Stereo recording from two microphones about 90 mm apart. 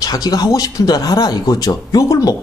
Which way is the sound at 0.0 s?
45° left (ahead or behind).